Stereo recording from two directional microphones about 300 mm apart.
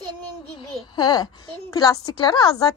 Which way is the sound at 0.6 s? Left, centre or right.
Centre.